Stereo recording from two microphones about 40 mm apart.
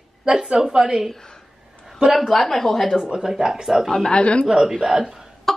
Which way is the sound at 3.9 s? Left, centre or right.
Centre.